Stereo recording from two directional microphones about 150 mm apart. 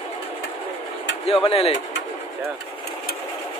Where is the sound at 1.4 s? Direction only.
40° left (ahead or behind).